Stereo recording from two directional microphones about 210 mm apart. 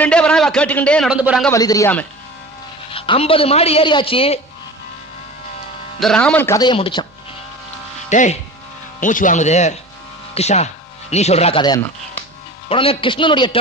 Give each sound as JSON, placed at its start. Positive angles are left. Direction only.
{"t": 0.0, "sound": "a man's voice", "side_deg": 5}
{"t": 1.5, "sound": "speech", "side_deg": 15}
{"t": 2.9, "sound": "speech", "side_deg": 25}
{"t": 5.9, "sound": "speech", "side_deg": 5}
{"t": 8.1, "sound": "speech", "side_deg": 35}